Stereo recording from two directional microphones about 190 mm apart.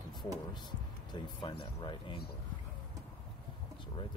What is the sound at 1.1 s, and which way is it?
Speech, 25° left (ahead or behind).